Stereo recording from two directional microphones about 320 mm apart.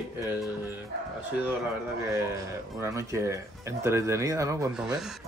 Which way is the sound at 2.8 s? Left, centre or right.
Centre.